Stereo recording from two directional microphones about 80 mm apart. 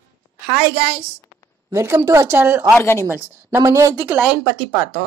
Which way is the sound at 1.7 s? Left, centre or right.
Right.